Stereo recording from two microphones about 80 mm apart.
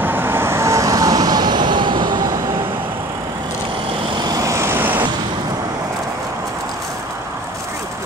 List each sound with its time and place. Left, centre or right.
0.0 s vehicle: right
4.3 s vehicle: right